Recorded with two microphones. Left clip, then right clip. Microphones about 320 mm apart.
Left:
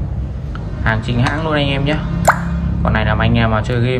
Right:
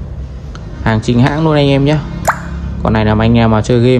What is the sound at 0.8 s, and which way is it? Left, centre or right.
Speech, centre.